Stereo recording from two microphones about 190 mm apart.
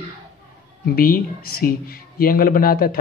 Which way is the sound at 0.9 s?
50° left (ahead or behind).